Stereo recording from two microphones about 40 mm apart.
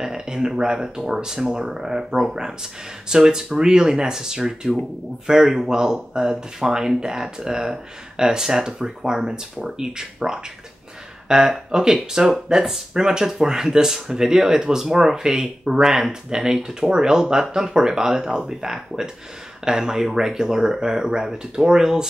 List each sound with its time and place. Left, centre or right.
0.0 s speech: centre